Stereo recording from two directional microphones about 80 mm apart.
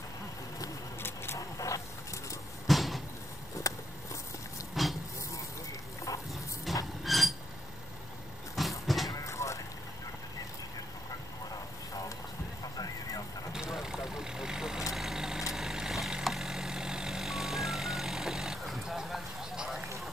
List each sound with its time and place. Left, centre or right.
1.0 s vehicle: left
2.6 s a sound: centre
3.6 s a sound: left
4.8 s vehicle: centre
6.7 s a sound: centre
8.5 s vehicle: centre
9.1 s vehicle: left
12.6 s vehicle: left
13.5 s vehicle: centre